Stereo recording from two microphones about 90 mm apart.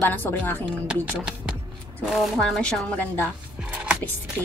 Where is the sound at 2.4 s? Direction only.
10° left (ahead or behind).